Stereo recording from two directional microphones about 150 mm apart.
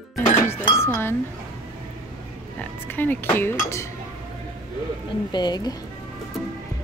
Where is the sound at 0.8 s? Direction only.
15° left (ahead or behind).